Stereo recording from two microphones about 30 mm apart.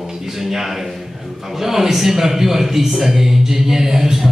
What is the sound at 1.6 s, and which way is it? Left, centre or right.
A man's voice, centre.